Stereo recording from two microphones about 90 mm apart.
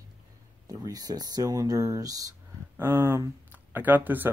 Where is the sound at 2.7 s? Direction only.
25° right (ahead or behind).